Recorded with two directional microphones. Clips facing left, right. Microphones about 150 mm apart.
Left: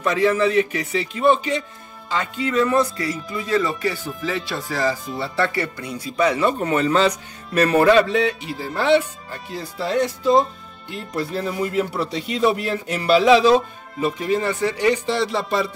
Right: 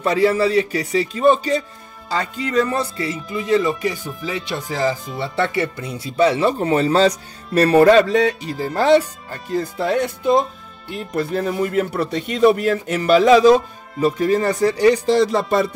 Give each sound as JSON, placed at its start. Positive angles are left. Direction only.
{"t": 0.0, "sound": "speech", "side_deg": -35}